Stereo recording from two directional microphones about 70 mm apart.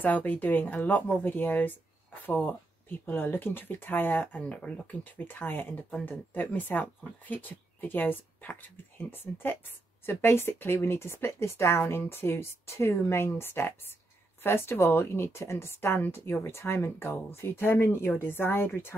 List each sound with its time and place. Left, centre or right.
0.0 s speech: left
5.1 s speech: left